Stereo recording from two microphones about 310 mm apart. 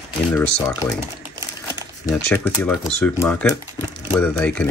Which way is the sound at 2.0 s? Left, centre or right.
Centre.